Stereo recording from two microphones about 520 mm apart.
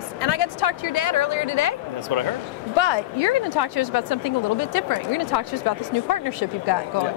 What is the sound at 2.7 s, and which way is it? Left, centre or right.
Speech, left.